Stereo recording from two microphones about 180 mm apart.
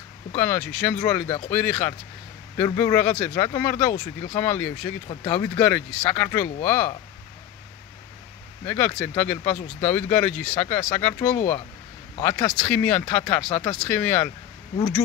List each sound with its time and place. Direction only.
0.4 s speech: 10° left (ahead or behind)
8.6 s speech: 10° left (ahead or behind)
13.8 s speech: 5° left (ahead or behind)